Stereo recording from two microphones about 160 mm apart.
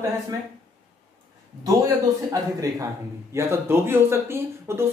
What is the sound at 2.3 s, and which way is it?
Speech, 20° right (ahead or behind).